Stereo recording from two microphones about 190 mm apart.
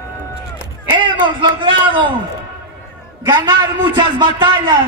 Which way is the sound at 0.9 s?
25° right (ahead or behind).